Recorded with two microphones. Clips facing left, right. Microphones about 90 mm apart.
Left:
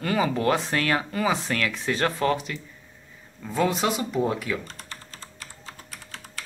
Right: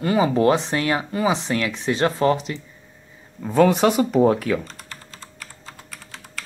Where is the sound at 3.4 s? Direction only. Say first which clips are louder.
Right 8 dB; 55° right (ahead or behind).